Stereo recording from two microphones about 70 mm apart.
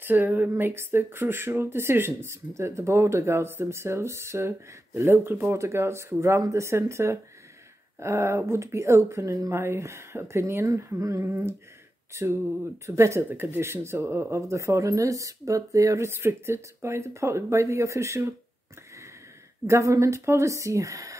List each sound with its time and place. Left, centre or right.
0.0 s speech: right
13.3 s speech: right
16.1 s speech: right
19.6 s speech: right